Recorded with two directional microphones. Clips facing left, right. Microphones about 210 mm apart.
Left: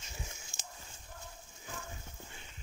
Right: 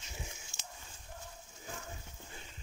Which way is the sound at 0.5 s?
45° left (ahead or behind).